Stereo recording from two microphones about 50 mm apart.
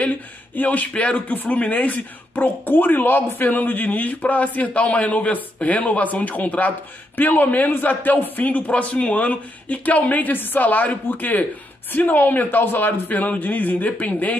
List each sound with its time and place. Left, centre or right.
0.6 s a man's voice: left